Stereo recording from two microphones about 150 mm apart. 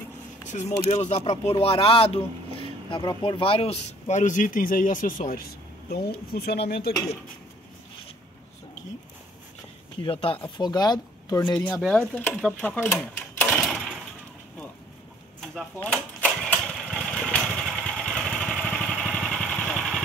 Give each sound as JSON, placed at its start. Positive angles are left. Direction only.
{"t": 0.5, "sound": "speech", "side_deg": 50}
{"t": 6.3, "sound": "speech", "side_deg": 90}
{"t": 10.0, "sound": "speech", "side_deg": 35}
{"t": 15.4, "sound": "engine", "side_deg": 5}